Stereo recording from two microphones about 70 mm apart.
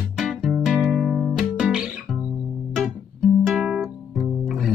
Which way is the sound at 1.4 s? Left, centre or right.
Centre.